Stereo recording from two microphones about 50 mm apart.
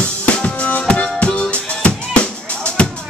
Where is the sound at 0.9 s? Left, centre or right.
Left.